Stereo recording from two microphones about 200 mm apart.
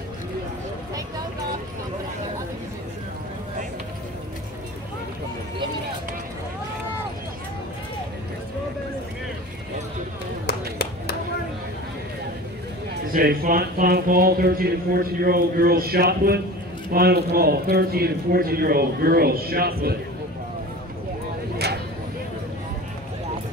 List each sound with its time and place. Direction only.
13.1 s speech: 45° right (ahead or behind)